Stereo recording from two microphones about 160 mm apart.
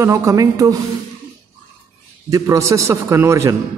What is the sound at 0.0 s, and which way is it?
Speech, 20° right (ahead or behind).